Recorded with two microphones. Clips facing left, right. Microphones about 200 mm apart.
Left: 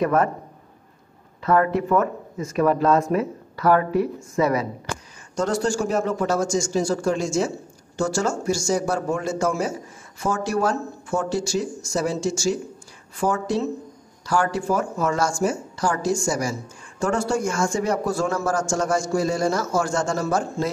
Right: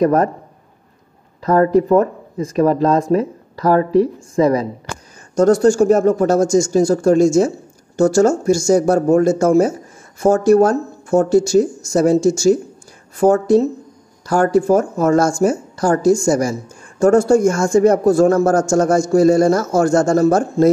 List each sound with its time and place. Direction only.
0.0 s speech: 35° right (ahead or behind)
1.4 s speech: 35° right (ahead or behind)